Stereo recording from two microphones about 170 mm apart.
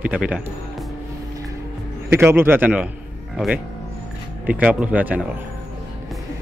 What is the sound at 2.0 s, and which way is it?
Speech, 15° right (ahead or behind).